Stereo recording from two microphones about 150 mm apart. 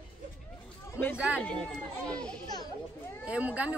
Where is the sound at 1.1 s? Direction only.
10° right (ahead or behind).